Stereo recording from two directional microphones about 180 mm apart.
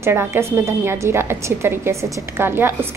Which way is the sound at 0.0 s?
15° right (ahead or behind).